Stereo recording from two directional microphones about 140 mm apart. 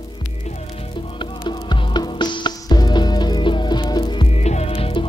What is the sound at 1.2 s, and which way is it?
Music, 35° left (ahead or behind).